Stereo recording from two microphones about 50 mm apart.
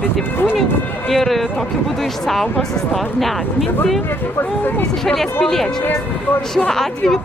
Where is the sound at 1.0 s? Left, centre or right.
Centre.